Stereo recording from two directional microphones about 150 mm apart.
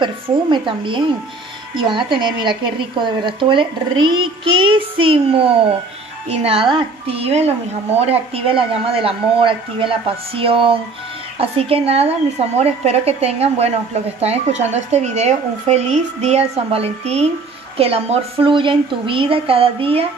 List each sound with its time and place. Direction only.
0.0 s speech: 30° right (ahead or behind)